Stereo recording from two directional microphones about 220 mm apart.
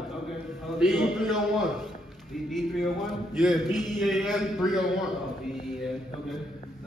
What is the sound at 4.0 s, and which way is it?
Speech, centre (ahead or behind).